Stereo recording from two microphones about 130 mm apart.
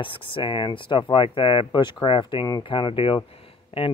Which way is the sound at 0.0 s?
40° left (ahead or behind).